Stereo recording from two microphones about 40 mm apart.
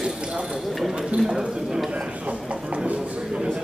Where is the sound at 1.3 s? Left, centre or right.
Centre.